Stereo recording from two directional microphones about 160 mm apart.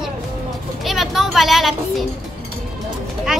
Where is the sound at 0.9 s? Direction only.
Centre (ahead or behind).